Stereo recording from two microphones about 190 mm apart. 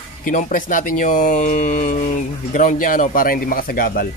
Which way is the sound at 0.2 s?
45° left (ahead or behind).